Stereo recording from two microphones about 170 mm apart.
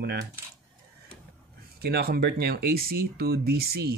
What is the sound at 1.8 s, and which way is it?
Speech, 65° right (ahead or behind).